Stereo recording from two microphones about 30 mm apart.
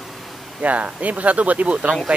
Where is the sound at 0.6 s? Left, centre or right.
Right.